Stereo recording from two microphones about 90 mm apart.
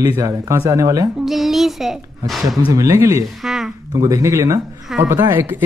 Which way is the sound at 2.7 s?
35° right (ahead or behind).